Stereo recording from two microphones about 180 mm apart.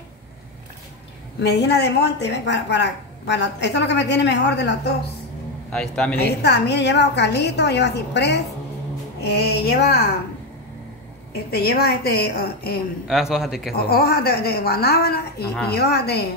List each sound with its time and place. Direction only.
1.4 s a woman's voice: 70° left (ahead or behind)
5.7 s a man's voice: 5° left (ahead or behind)
6.2 s a woman's voice: 65° left (ahead or behind)
11.5 s a woman's voice: 60° left (ahead or behind)
13.0 s a man's voice: centre (ahead or behind)
13.7 s a woman's voice: 60° left (ahead or behind)